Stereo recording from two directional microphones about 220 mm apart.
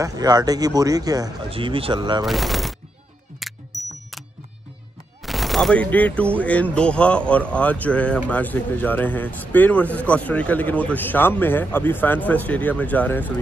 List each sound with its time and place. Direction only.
0.0 s a man's voice: 15° right (ahead or behind)
2.2 s speech: centre (ahead or behind)
3.3 s music: centre (ahead or behind)
5.2 s speech: centre (ahead or behind)